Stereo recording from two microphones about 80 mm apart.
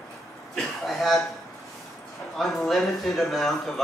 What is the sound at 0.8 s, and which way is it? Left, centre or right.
Speech, centre.